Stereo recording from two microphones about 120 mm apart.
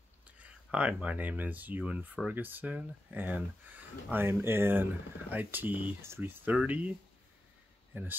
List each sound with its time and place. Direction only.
0.4 s speech: 10° right (ahead or behind)
7.9 s speech: 15° right (ahead or behind)